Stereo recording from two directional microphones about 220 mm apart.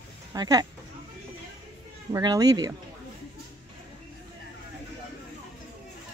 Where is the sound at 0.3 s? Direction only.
15° right (ahead or behind).